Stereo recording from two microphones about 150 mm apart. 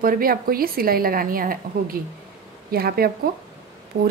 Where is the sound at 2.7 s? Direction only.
90° right.